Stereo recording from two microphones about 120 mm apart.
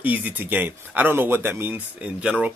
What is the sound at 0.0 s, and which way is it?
Speech, 15° right (ahead or behind).